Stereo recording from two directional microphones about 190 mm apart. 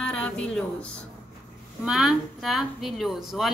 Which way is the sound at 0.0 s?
5° left (ahead or behind).